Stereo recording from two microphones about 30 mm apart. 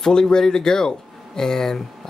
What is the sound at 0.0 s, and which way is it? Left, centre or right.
Speech, left.